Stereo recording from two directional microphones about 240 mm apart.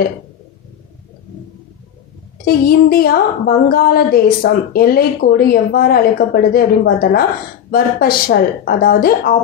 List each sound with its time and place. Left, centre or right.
2.4 s a woman's voice: left